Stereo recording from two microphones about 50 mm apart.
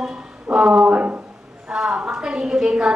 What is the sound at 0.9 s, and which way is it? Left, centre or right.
A woman's voice, right.